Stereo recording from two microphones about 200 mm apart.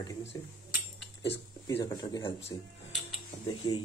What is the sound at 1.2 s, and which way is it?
Speech, 15° left (ahead or behind).